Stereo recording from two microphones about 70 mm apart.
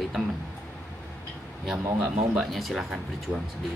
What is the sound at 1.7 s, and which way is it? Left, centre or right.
Speech, right.